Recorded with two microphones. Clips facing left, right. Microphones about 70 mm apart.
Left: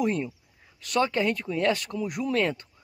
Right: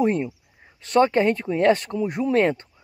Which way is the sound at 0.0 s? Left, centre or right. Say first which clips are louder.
Right 5 dB; right.